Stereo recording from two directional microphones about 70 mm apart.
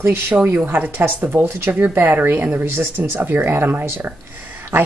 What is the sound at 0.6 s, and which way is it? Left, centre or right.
Speech, right.